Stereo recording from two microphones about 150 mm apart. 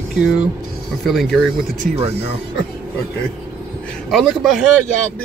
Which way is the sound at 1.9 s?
40° right (ahead or behind).